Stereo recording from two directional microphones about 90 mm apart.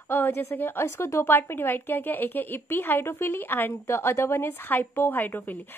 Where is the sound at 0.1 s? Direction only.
25° left (ahead or behind).